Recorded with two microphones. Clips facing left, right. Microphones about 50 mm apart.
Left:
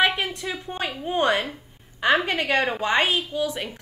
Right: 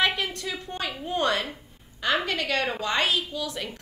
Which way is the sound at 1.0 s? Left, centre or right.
Left.